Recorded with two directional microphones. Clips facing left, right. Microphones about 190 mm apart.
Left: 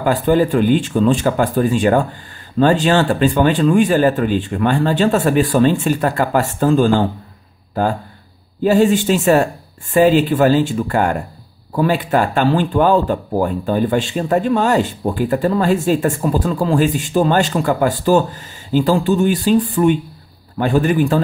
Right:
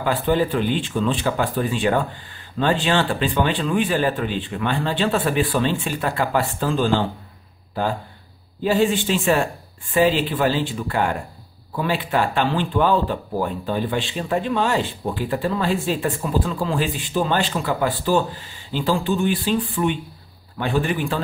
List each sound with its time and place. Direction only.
0.0 s speech: 45° left (ahead or behind)